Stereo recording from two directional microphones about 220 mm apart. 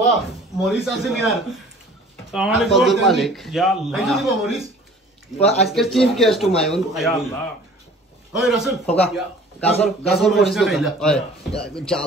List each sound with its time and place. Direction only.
0.6 s a man's voice: centre (ahead or behind)
5.4 s speech: 30° left (ahead or behind)
5.7 s a man's voice: centre (ahead or behind)
8.3 s a man's voice: centre (ahead or behind)